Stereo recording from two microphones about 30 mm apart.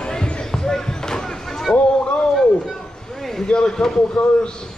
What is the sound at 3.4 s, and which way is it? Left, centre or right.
A man's voice, left.